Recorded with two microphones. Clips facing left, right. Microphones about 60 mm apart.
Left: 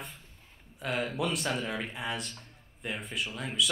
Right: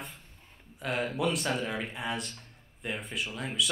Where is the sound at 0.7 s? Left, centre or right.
Centre.